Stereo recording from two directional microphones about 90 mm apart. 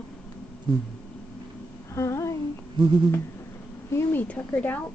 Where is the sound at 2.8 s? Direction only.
65° right (ahead or behind).